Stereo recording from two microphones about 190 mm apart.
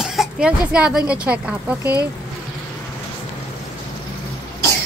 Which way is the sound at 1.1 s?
5° right (ahead or behind).